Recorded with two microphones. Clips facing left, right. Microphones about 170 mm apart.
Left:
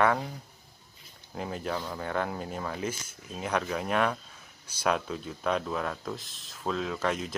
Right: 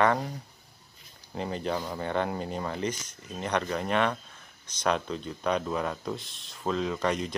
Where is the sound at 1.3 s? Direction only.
5° left (ahead or behind).